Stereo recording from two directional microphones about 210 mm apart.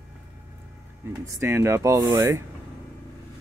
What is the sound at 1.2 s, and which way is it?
Speech, 15° right (ahead or behind).